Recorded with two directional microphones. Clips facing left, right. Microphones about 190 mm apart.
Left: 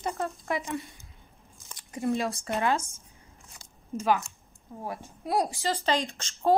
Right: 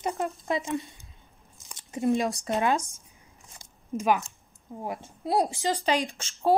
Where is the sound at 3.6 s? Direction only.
15° right (ahead or behind).